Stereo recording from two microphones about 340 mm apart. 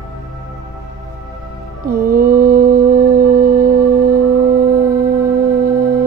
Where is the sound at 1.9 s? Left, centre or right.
Right.